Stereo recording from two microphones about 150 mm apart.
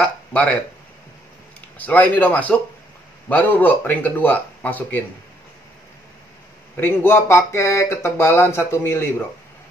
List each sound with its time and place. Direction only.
0.0 s speech: 5° left (ahead or behind)
1.8 s speech: 10° left (ahead or behind)
6.8 s speech: 15° left (ahead or behind)